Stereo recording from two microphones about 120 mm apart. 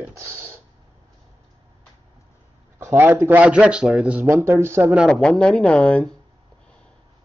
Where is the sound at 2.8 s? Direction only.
20° right (ahead or behind).